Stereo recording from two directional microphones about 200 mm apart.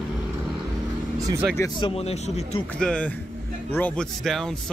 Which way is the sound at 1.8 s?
30° left (ahead or behind).